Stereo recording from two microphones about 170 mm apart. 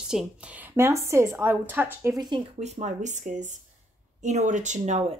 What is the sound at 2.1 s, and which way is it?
Speech, 25° right (ahead or behind).